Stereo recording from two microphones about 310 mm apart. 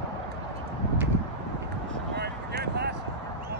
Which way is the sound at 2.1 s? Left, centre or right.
Right.